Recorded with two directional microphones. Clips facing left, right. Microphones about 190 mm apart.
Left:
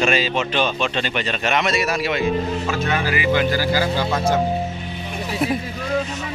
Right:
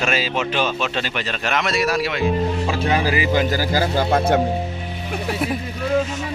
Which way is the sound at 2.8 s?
35° right (ahead or behind).